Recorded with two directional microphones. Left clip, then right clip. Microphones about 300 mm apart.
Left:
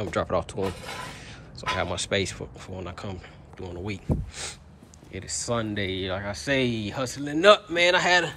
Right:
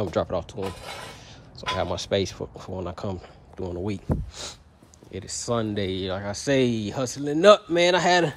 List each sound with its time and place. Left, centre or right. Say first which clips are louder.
0.0 s speech: even; centre